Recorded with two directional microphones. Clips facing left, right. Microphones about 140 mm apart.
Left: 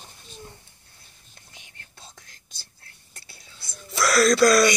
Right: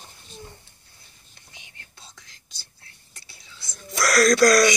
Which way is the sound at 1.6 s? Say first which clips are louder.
Left 2 dB; 45° left (ahead or behind).